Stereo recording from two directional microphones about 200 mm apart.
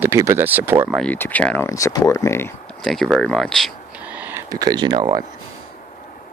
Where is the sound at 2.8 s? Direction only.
Centre (ahead or behind); by 5.2 s 20° right (ahead or behind).